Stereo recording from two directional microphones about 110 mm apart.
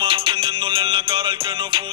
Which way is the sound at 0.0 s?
50° right (ahead or behind).